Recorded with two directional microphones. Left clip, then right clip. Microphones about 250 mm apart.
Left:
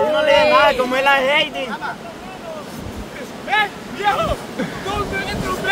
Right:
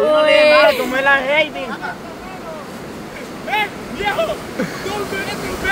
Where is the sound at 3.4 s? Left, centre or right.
Right.